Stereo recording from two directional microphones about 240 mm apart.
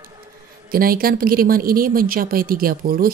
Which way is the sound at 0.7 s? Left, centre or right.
Right.